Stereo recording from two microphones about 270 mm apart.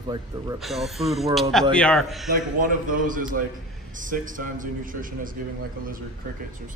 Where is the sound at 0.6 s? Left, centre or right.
Centre.